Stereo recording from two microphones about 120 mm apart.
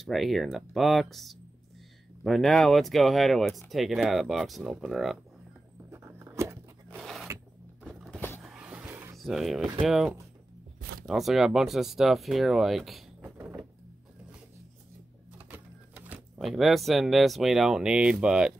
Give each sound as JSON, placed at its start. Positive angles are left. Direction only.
{"t": 0.0, "sound": "speech", "side_deg": 0}
{"t": 5.9, "sound": "a sound", "side_deg": -20}
{"t": 7.0, "sound": "zipper", "side_deg": 0}
{"t": 7.8, "sound": "a sound", "side_deg": 0}
{"t": 8.1, "sound": "vehicle", "side_deg": 15}
{"t": 8.4, "sound": "vehicle", "side_deg": -5}
{"t": 9.1, "sound": "speech", "side_deg": 0}
{"t": 13.2, "sound": "a sound", "side_deg": -15}
{"t": 15.3, "sound": "typewriter", "side_deg": -15}
{"t": 16.3, "sound": "speech", "side_deg": 0}